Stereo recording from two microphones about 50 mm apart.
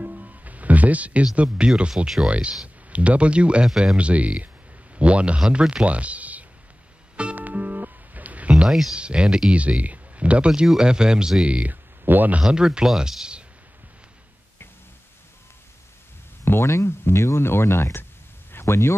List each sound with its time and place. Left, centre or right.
0.0 s music: right
1.3 s speech: right
7.3 s music: right
8.5 s speech: centre
8.9 s speech: centre
11.4 s speech: right
12.0 s speech: right
12.4 s speech: centre
16.6 s speech: left
17.0 s speech: left
18.5 s a sound: left